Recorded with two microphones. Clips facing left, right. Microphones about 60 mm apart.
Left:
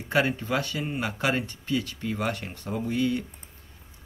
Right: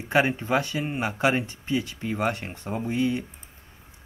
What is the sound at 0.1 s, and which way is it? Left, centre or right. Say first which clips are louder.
Speech: right 3 dB; right.